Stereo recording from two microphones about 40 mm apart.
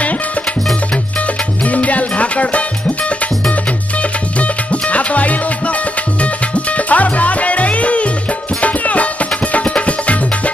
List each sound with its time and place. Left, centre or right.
1.6 s music: left
4.4 s music: left
6.9 s music: left